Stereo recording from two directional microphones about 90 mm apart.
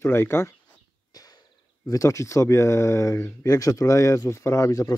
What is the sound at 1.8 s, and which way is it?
Speech, 35° left (ahead or behind).